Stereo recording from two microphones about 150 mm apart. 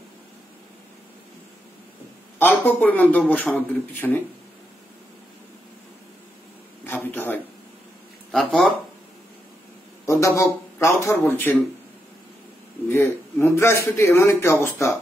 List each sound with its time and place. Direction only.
2.6 s speech: 10° left (ahead or behind)
6.9 s a sound: 15° left (ahead or behind)
8.3 s speech: 5° left (ahead or behind)
10.0 s speech: 20° left (ahead or behind)
12.8 s a man's voice: 15° left (ahead or behind)